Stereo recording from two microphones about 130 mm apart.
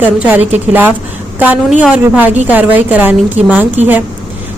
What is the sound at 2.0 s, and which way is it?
A woman's voice, 15° right (ahead or behind).